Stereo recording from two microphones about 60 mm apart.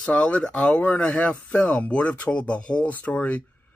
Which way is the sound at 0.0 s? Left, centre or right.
Centre.